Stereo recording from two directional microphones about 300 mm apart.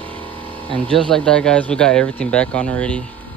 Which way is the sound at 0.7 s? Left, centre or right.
Centre.